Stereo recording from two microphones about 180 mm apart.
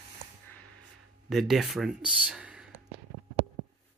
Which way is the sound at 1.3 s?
Centre (ahead or behind).